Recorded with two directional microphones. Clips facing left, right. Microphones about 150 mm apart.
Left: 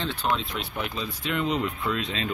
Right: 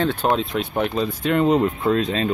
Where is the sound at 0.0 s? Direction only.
50° right (ahead or behind).